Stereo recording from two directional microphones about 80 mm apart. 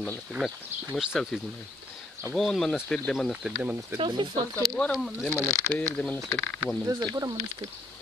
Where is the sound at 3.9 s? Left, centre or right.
Right.